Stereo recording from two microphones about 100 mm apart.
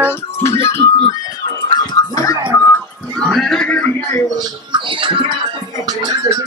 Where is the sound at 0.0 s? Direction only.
25° left (ahead or behind).